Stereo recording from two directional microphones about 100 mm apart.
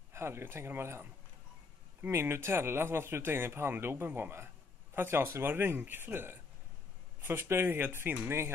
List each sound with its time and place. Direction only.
0.1 s speech: 25° right (ahead or behind)